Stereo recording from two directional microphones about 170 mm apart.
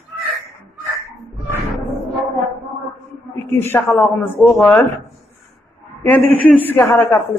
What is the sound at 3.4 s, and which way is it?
Speech, 15° left (ahead or behind).